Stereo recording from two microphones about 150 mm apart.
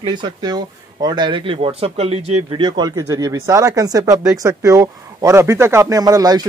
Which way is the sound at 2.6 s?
30° right (ahead or behind).